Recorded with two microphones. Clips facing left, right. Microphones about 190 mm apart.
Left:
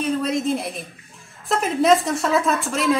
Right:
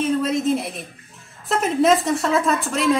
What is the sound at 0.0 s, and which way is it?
A woman's voice, centre (ahead or behind).